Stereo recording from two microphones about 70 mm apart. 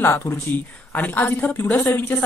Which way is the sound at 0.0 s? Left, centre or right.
Left.